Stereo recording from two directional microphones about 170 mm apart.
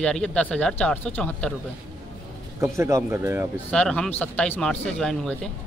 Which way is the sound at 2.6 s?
15° right (ahead or behind).